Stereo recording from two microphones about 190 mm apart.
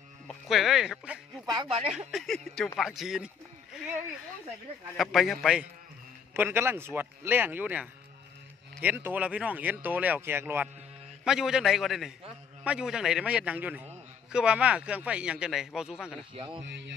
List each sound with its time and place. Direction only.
0.3 s a man's voice: centre (ahead or behind)
4.9 s a man's voice: centre (ahead or behind)
16.3 s speech: 25° right (ahead or behind)
16.6 s a man's voice: 65° right (ahead or behind)